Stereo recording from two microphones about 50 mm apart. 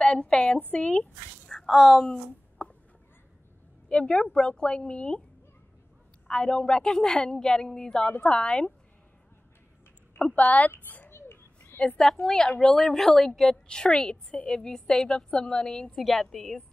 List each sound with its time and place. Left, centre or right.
0.0 s a woman's voice: centre
1.5 s a woman's voice: centre
2.6 s a sound: left
3.9 s a woman's voice: centre
6.2 s a woman's voice: centre
10.1 s speech: left
10.8 s a sound: left
11.1 s a sound: left
12.0 s a woman's voice: centre